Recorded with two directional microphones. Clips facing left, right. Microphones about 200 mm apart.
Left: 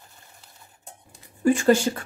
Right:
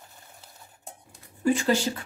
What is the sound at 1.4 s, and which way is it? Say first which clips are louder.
Speech: left 5 dB; 50° left (ahead or behind).